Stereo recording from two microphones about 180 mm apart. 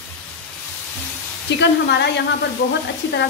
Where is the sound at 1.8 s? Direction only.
70° left (ahead or behind).